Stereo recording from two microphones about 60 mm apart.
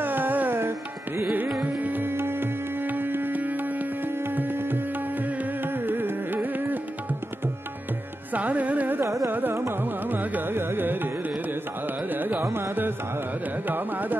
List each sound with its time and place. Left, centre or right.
0.0 s music: right
1.8 s music: right
8.3 s music: right
9.0 s carnatic music: right
9.3 s carnatic music: right
13.7 s carnatic music: right